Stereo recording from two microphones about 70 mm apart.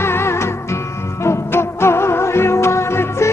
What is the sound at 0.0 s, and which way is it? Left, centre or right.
Music, left.